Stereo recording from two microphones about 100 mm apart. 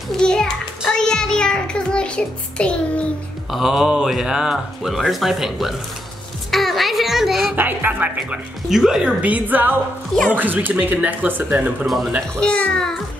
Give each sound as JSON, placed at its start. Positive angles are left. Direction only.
{"t": 0.2, "sound": "child singing", "side_deg": 5}
{"t": 3.5, "sound": "speech", "side_deg": -5}
{"t": 6.5, "sound": "music", "side_deg": 0}
{"t": 7.5, "sound": "speech", "side_deg": -20}
{"t": 8.6, "sound": "speech", "side_deg": -5}
{"t": 12.4, "sound": "a child's voice", "side_deg": 10}